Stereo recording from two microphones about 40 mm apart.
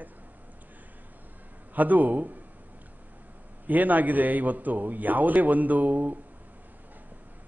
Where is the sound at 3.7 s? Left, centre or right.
Right.